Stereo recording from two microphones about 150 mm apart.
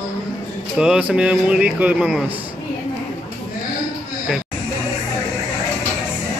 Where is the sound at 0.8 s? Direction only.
5° right (ahead or behind).